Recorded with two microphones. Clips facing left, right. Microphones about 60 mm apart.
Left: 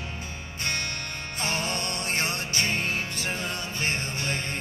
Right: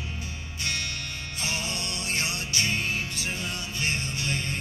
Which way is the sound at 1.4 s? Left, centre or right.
Left.